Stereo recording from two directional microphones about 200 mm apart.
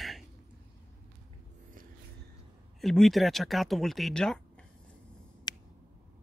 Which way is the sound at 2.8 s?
Centre (ahead or behind).